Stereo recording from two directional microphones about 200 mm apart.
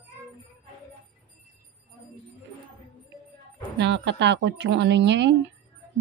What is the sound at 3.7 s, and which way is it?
A woman's voice, 60° right (ahead or behind).